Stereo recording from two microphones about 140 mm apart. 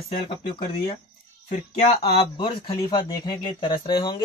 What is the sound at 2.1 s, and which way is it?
Speech, 35° left (ahead or behind).